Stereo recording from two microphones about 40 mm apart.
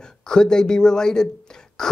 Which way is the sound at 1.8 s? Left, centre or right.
Centre.